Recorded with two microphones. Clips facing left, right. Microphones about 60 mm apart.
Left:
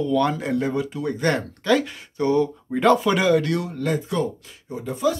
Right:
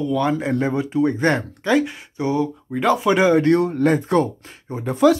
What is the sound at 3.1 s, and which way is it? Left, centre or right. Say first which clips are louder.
Speech: right 4 dB; right.